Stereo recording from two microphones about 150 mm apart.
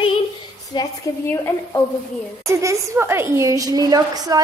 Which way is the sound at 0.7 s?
30° left (ahead or behind).